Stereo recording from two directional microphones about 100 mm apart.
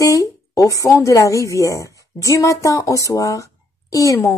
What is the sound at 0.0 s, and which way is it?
Speech, 35° left (ahead or behind).